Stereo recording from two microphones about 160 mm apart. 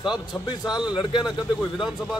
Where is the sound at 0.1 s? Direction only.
30° left (ahead or behind).